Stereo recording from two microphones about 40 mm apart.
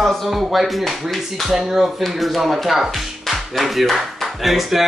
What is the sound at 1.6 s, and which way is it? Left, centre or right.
Speech, centre.